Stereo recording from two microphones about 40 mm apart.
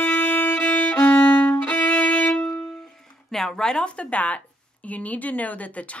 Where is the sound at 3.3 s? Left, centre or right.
Centre.